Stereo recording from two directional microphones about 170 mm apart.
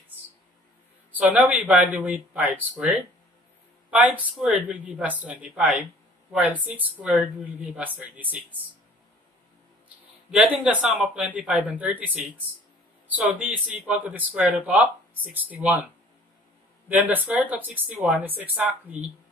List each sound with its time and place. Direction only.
1.1 s speech: 10° right (ahead or behind)
10.3 s speech: 10° right (ahead or behind)
16.9 s speech: 10° right (ahead or behind)